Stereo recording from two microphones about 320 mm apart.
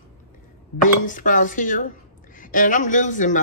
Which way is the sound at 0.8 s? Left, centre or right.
Left.